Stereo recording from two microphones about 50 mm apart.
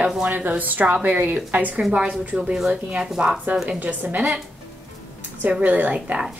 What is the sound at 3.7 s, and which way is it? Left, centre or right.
Speech, right.